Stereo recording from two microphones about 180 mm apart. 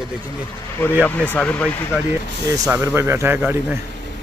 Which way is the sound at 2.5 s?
15° right (ahead or behind).